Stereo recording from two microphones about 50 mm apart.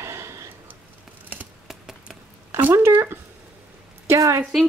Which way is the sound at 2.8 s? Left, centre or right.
Right.